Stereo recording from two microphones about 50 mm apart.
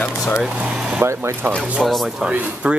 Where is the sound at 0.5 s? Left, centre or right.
Right.